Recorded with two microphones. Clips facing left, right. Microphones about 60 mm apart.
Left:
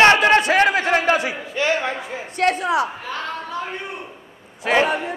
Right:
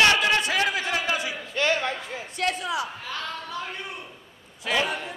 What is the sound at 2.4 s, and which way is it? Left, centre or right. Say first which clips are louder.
Speech: left 8 dB; left.